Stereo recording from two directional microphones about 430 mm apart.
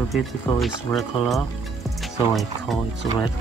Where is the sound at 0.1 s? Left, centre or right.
Centre.